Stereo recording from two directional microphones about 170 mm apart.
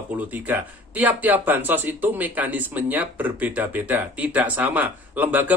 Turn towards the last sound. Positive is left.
turn(degrees=-10)  # may be behind; listen again after turning